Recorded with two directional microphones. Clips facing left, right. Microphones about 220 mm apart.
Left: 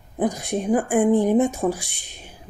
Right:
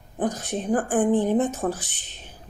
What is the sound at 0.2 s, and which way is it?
A woman's voice, 10° left (ahead or behind).